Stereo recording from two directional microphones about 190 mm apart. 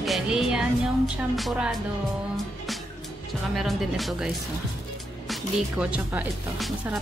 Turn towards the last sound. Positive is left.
turn(degrees=0)  # may be behind; listen again after turning